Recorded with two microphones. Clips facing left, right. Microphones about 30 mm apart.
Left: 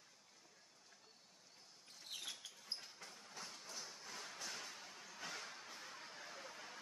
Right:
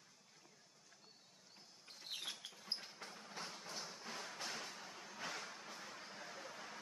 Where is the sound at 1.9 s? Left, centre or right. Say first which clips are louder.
Right 2 dB; right.